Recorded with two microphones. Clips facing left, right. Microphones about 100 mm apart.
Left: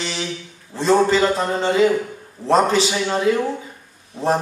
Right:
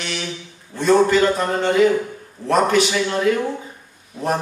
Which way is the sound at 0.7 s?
30° left (ahead or behind).